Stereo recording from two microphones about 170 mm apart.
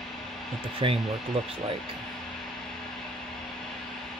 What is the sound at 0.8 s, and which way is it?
Speech, 30° right (ahead or behind).